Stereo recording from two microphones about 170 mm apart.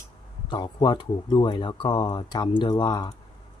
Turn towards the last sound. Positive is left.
turn(degrees=25)  # may be behind; listen again after turning